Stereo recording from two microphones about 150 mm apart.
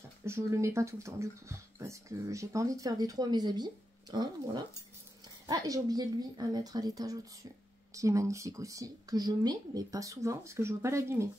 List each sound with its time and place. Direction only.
0.2 s a woman's voice: 20° right (ahead or behind)